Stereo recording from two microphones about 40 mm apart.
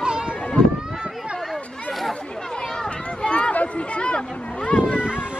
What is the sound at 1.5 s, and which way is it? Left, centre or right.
Chatter, centre.